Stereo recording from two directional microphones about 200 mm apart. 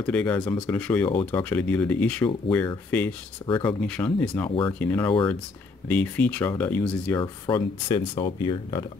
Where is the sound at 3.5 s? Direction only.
25° left (ahead or behind).